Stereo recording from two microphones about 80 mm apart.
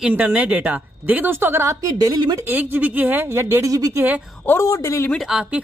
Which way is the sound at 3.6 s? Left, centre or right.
Right.